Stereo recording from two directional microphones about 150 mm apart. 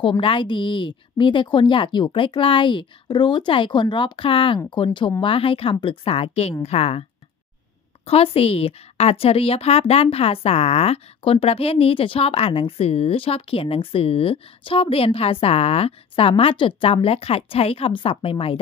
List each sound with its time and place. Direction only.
0.0 s a woman's voice: 35° left (ahead or behind)